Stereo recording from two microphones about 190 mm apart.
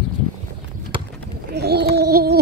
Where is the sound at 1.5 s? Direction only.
60° right (ahead or behind).